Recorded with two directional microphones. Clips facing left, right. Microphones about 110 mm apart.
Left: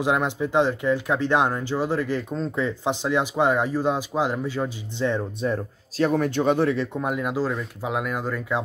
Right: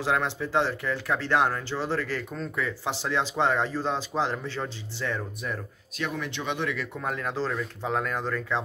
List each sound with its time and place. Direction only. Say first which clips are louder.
0.0 s speech: left 4 dB; 15° left (ahead or behind)
5.0 s speech: left 8 dB; 25° left (ahead or behind)
7.0 s speech: left 5 dB; 15° left (ahead or behind)